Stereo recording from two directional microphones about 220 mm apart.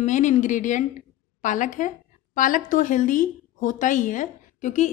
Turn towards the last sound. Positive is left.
turn(degrees=35)  # may be behind; listen again after turning